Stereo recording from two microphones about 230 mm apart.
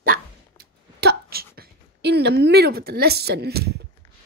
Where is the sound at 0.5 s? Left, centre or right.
Right.